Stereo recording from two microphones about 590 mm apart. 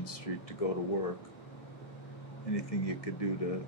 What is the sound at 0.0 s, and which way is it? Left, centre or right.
Speech, left.